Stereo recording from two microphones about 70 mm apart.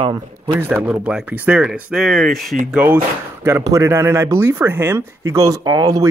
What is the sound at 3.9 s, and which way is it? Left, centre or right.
Speech, right.